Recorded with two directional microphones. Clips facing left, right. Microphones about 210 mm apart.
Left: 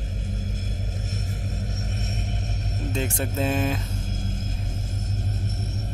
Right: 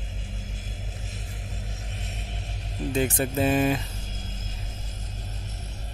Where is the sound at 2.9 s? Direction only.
5° right (ahead or behind).